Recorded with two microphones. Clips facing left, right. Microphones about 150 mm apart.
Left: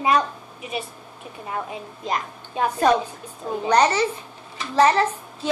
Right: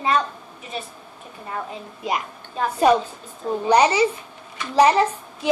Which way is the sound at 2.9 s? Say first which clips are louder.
Right 4 dB; 10° right (ahead or behind).